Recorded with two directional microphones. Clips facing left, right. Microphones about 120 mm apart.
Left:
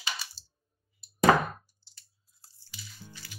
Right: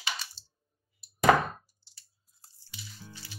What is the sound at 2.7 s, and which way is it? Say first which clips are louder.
Music: right 1 dB; 25° right (ahead or behind).